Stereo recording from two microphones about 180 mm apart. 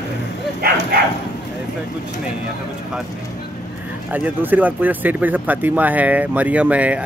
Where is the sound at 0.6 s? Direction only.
60° right (ahead or behind).